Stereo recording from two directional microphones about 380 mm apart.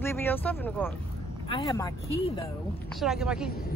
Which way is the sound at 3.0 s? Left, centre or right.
Centre.